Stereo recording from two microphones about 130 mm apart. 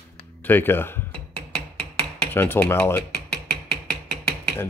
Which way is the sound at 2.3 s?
15° left (ahead or behind).